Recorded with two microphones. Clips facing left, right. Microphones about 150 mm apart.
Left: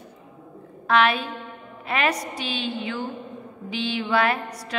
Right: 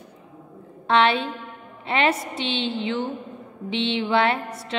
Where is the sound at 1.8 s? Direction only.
25° right (ahead or behind).